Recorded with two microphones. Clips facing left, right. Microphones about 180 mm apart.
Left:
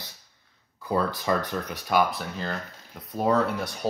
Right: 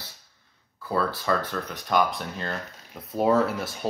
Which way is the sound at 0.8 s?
15° left (ahead or behind).